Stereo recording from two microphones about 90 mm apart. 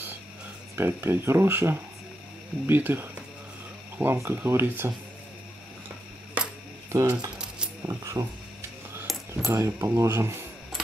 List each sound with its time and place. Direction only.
0.7 s speech: 25° right (ahead or behind)
6.9 s speech: 40° right (ahead or behind)
7.3 s keys jangling: 10° right (ahead or behind)
7.8 s speech: 35° right (ahead or behind)
9.3 s speech: 30° right (ahead or behind)